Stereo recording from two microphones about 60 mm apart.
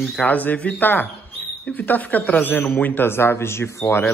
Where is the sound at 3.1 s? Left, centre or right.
Left.